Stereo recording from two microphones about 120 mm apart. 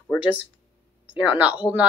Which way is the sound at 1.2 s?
10° right (ahead or behind).